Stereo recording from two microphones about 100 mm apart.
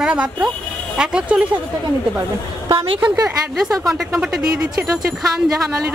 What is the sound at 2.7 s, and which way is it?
Speech, 65° right (ahead or behind).